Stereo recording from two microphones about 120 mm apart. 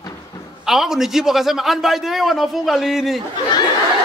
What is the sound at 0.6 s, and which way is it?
A man's voice, 5° right (ahead or behind).